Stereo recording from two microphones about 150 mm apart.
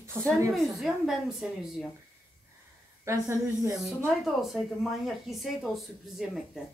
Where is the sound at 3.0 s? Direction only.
20° right (ahead or behind).